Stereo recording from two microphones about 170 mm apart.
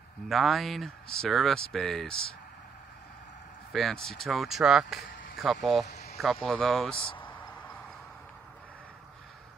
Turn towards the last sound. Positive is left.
turn(degrees=10)  # may be behind; listen again after turning